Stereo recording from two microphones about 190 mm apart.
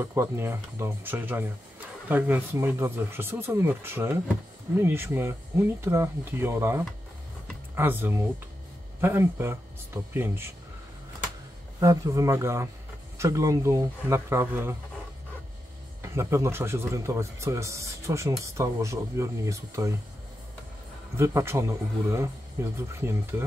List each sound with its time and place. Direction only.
0.0 s speech: 15° right (ahead or behind)
11.8 s speech: 15° right (ahead or behind)
16.0 s speech: 15° right (ahead or behind)
21.2 s speech: 15° right (ahead or behind)